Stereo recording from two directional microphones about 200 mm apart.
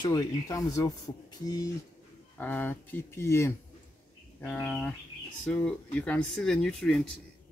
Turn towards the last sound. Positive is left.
turn(degrees=5)  # may be behind; listen again after turning